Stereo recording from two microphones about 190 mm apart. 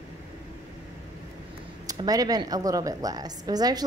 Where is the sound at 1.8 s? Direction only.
20° right (ahead or behind).